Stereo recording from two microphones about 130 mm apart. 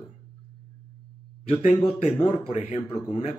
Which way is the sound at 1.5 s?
60° left (ahead or behind).